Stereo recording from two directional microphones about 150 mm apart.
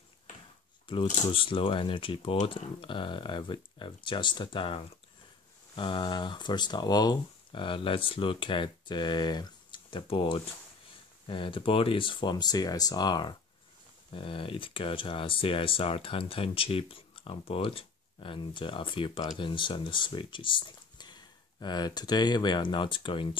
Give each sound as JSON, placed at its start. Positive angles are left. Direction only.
{"t": 0.9, "sound": "speech", "side_deg": 35}